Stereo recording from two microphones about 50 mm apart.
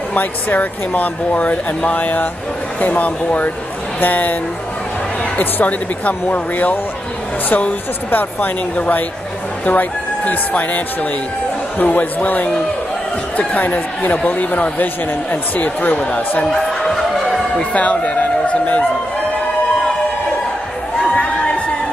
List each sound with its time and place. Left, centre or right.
0.1 s speech: left
5.4 s speech: left
11.8 s speech: left
16.4 s music: centre
17.6 s speech: left